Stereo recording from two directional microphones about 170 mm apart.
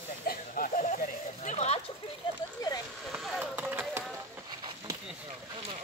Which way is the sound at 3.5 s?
15° right (ahead or behind).